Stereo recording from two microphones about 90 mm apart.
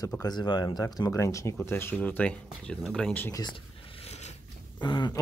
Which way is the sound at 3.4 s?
75° left (ahead or behind).